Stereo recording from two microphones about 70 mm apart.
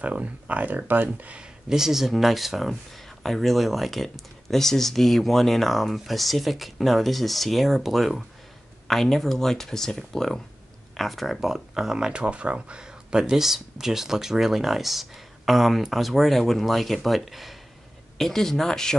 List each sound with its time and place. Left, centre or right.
0.0 s speech: right
1.7 s speech: centre